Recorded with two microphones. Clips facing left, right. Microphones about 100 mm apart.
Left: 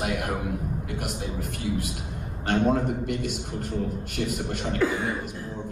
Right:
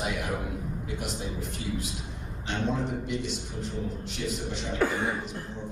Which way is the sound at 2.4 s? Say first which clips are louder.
Left 7 dB; 55° left (ahead or behind).